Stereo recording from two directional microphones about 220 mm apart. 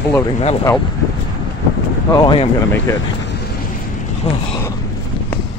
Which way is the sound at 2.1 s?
20° left (ahead or behind).